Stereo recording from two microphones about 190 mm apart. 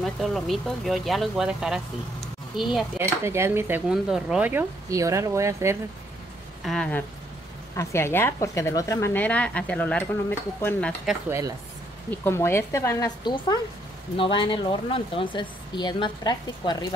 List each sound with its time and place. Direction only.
0.0 s speech: centre (ahead or behind)
3.0 s speech: 15° right (ahead or behind)
6.6 s a woman's voice: 5° left (ahead or behind)
11.1 s speech: 15° right (ahead or behind)
12.1 s a woman's voice: 15° left (ahead or behind)